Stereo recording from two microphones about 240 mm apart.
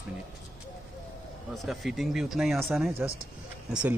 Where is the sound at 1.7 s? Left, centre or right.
Centre.